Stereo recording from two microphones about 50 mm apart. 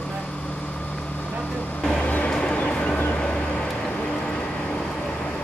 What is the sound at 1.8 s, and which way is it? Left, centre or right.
Vehicle, centre.